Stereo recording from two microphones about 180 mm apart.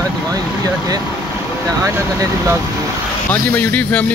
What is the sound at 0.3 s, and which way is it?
Vehicle, 20° right (ahead or behind).